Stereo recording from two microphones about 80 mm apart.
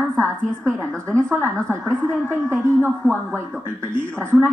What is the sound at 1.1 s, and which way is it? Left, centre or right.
A woman's voice, right.